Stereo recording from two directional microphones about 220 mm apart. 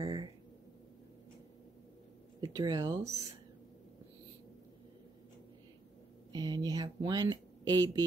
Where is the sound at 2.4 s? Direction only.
15° right (ahead or behind).